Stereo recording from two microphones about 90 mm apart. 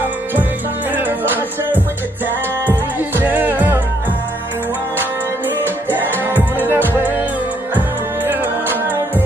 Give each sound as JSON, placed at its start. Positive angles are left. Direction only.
{"t": 0.9, "sound": "music", "side_deg": -20}
{"t": 3.2, "sound": "music", "side_deg": -20}
{"t": 5.9, "sound": "music", "side_deg": -25}